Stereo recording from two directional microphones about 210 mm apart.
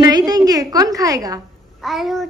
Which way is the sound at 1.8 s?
Centre (ahead or behind).